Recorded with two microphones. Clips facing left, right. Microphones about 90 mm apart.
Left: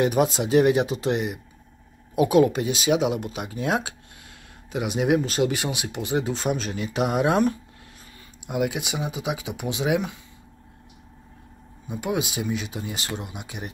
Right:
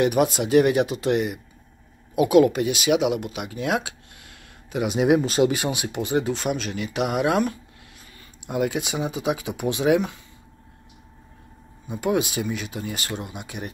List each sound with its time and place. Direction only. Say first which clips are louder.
0.0 s speech: right 1 dB; 25° left (ahead or behind)
4.8 s speech: right 3 dB; 5° right (ahead or behind)
6.2 s speech: even; 30° left (ahead or behind)
8.5 s speech: right 1 dB; 10° left (ahead or behind)
12.0 s speech: right 4 dB; 15° left (ahead or behind)